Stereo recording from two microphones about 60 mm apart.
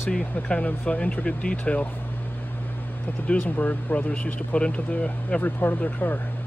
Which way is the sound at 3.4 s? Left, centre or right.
Left.